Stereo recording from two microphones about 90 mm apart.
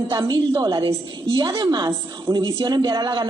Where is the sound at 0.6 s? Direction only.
50° right (ahead or behind).